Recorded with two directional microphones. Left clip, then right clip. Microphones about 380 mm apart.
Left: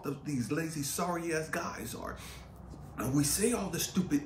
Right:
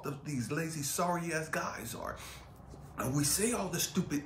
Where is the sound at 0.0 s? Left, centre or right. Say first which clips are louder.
Left 3 dB; centre.